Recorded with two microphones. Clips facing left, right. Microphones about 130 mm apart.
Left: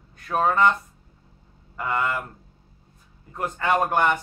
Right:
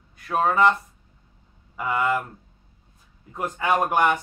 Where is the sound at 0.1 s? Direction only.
5° right (ahead or behind).